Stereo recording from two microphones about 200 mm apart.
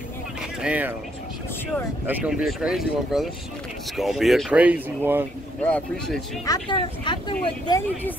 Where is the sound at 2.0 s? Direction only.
5° right (ahead or behind).